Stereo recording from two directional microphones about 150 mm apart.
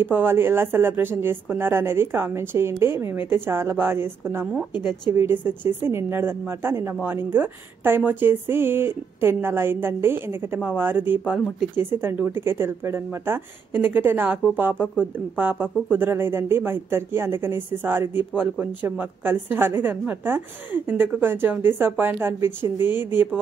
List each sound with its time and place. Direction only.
0.0 s speech: 15° right (ahead or behind)
11.2 s speech: centre (ahead or behind)
11.7 s speech: 15° right (ahead or behind)